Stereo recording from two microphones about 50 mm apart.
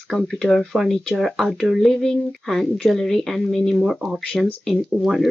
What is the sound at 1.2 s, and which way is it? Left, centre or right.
Speech, centre.